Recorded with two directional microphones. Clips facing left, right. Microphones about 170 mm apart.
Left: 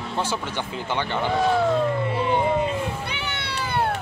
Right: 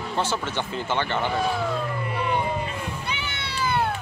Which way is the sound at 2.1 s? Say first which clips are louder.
Left 3 dB; 25° left (ahead or behind).